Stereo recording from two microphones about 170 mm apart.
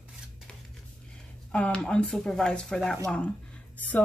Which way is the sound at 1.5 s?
5° left (ahead or behind).